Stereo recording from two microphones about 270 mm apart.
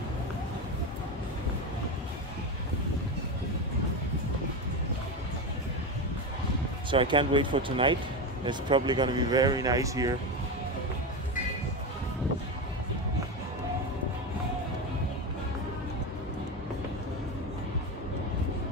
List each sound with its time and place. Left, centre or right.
6.9 s speech: centre